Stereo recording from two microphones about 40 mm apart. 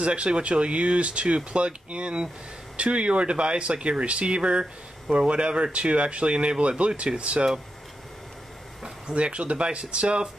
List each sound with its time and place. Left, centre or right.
0.0 s speech: right
9.0 s speech: right